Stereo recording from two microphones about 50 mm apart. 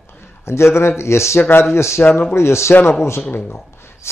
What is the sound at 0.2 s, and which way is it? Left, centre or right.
A man's voice, left.